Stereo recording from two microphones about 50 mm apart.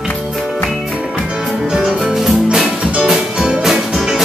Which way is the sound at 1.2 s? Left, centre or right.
Centre.